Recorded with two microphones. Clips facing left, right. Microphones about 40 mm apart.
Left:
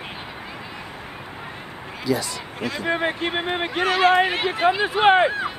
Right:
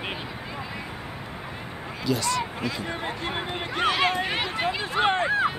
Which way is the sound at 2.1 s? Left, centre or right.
Centre.